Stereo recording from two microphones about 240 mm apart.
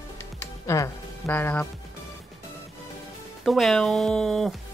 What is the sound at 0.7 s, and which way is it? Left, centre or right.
Speech, centre.